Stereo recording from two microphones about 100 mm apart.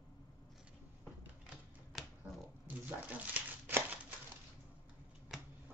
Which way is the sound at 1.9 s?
Centre (ahead or behind).